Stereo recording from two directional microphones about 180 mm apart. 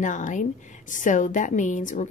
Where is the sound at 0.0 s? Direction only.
45° left (ahead or behind).